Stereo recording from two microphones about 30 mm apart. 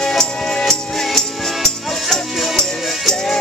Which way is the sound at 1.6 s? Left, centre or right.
Centre.